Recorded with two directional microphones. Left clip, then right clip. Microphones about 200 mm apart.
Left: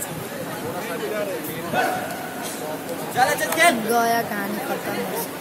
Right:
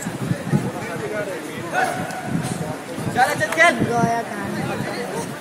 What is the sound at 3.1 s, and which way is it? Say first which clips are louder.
Speech: right 2 dB; 20° right (ahead or behind).